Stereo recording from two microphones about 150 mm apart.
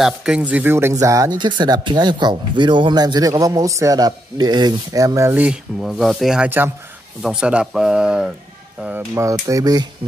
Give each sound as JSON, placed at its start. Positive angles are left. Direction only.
{"t": 0.0, "sound": "speech", "side_deg": -5}